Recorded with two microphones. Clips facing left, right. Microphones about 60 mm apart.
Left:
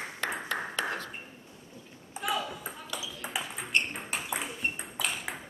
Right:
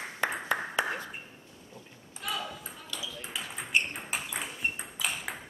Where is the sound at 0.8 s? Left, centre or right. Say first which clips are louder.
Right 2 dB; centre.